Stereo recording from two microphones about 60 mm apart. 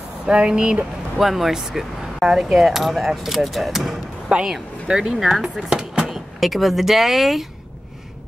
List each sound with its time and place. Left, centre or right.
0.3 s speech: centre
1.2 s speech: centre
5.7 s speech: centre